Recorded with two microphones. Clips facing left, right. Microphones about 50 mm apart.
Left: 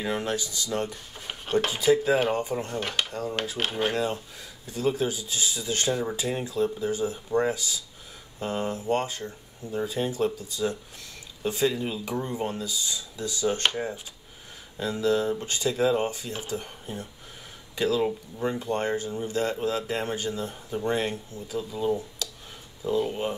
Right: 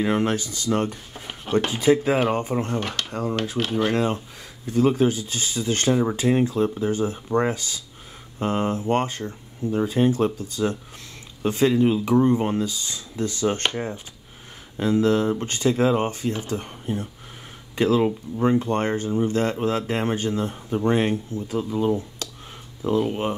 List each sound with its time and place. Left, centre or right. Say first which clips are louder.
0.0 s speech: right 6 dB; right
1.2 s speech: right 3 dB; centre
1.7 s speech: right 2 dB; right
3.1 s a sound: right 5 dB; right
3.9 s speech: right 5 dB; right
14.8 s speech: right 5 dB; right